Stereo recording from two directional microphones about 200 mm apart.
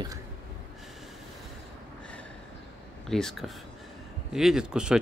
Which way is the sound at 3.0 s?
5° left (ahead or behind).